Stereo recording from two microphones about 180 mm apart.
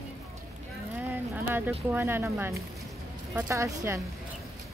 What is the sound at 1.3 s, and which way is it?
Speech, 10° right (ahead or behind).